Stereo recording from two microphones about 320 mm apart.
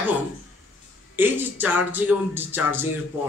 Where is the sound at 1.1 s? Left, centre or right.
Centre.